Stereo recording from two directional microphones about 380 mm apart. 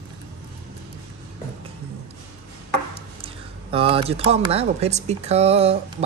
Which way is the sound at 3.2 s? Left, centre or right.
Centre.